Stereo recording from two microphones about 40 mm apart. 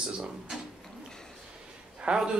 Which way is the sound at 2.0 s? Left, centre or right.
Right.